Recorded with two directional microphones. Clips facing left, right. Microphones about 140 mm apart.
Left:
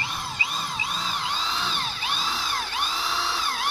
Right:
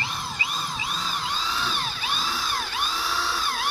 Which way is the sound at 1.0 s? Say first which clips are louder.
Even; 20° left (ahead or behind).